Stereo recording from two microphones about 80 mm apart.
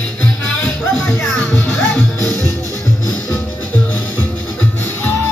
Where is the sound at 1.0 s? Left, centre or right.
Centre.